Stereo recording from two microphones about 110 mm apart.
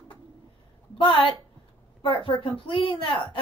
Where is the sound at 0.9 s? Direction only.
50° left (ahead or behind).